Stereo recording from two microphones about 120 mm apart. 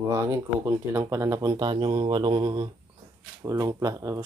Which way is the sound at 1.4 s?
35° right (ahead or behind).